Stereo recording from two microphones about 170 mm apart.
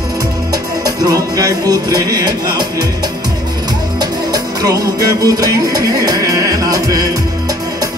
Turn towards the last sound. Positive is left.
turn(degrees=-20)  # may be behind; listen again after turning